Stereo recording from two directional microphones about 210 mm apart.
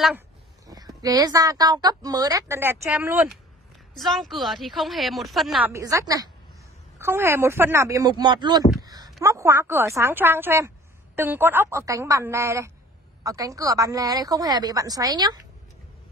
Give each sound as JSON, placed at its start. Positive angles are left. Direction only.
{"t": 0.7, "sound": "a woman's voice", "side_deg": -15}
{"t": 5.7, "sound": "a woman's voice", "side_deg": -15}